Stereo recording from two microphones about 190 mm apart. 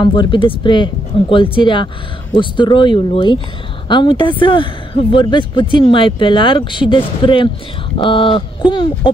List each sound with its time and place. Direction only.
0.0 s speech: 25° left (ahead or behind)